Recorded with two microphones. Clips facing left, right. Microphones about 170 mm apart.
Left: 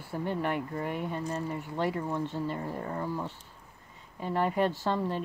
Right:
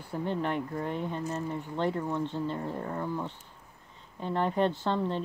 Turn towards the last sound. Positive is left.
turn(degrees=10)  # may be behind; listen again after turning